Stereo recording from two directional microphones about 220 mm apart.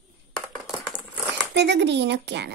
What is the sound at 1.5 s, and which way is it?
Speech, 50° right (ahead or behind).